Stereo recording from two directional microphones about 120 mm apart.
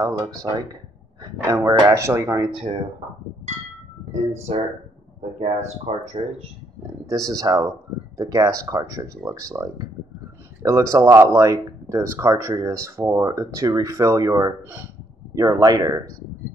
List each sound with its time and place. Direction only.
0.0 s speech: 25° right (ahead or behind)
4.1 s speech: 65° right (ahead or behind)
6.2 s speech: 55° right (ahead or behind)
7.1 s speech: 30° right (ahead or behind)
14.6 s speech: 15° right (ahead or behind)
15.3 s speech: 30° right (ahead or behind)